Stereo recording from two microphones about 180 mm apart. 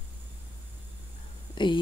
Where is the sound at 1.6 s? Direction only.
25° left (ahead or behind).